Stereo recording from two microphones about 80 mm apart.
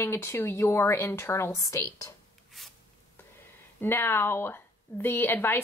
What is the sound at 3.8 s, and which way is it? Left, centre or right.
Speech, left.